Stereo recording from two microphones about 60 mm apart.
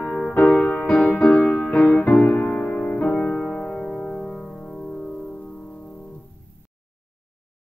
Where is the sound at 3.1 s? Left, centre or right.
Centre.